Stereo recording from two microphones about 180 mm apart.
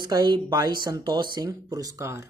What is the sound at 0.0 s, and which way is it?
Speech, 25° right (ahead or behind).